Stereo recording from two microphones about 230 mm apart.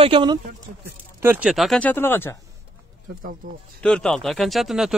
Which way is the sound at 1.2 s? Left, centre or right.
Centre.